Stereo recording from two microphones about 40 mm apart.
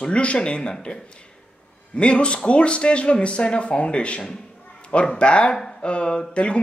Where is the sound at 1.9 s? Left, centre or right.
Left.